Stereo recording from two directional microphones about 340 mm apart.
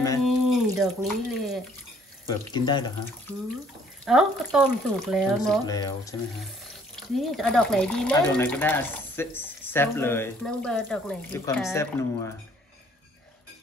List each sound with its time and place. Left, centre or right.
0.0 s a sound: centre
0.5 s speech: centre
2.2 s speech: centre
4.0 s speech: centre